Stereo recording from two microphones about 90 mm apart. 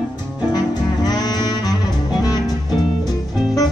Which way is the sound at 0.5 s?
50° left (ahead or behind).